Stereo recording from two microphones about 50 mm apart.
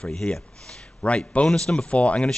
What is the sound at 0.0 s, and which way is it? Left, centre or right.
Speech, centre.